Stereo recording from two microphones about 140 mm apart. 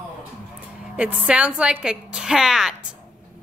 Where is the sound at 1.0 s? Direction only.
10° right (ahead or behind).